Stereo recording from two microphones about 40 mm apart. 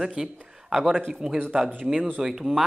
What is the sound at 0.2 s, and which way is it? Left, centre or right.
Speech, centre.